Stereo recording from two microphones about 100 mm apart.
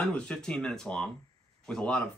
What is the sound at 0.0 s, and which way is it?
Speech, 10° left (ahead or behind).